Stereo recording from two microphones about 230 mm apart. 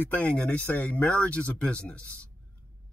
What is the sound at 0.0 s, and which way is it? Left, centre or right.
Speech, centre.